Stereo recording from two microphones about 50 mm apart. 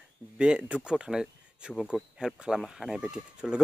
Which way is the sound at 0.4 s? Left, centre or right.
Right.